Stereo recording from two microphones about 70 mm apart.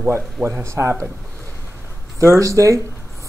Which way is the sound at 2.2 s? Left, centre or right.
Right.